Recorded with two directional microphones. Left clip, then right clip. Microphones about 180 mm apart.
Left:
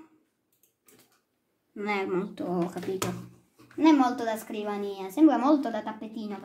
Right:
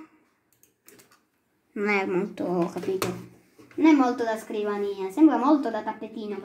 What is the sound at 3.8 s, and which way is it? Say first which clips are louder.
A woman's voice: right 2 dB; 40° left (ahead or behind).